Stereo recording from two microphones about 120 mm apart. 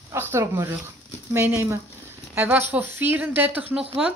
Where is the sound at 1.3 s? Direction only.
20° right (ahead or behind).